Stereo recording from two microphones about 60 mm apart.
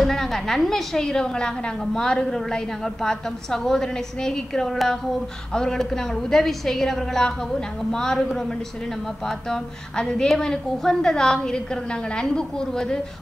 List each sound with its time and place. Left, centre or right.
0.0 s a woman's voice: centre